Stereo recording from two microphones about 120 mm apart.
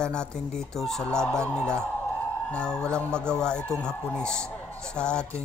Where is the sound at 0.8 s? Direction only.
5° left (ahead or behind).